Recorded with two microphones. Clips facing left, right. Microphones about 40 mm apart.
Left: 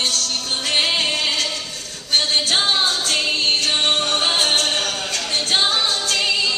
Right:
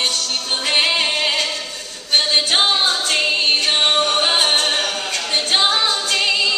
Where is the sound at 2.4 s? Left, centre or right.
Right.